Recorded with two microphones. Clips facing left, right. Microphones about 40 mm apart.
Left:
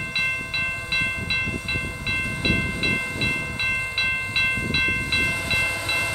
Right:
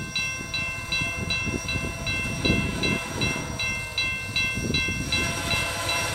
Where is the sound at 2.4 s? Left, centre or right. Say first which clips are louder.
Left 1 dB; left.